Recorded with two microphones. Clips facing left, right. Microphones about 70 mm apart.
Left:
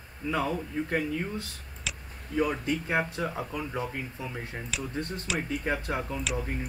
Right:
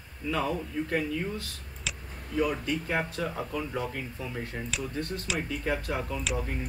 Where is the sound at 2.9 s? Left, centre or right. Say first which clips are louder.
Left 2 dB; left.